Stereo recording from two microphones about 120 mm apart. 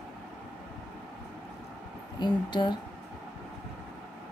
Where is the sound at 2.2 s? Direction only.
40° left (ahead or behind).